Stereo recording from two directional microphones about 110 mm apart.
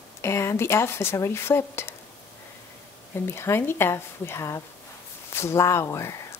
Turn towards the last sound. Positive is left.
turn(degrees=25)  # may be behind; listen again after turning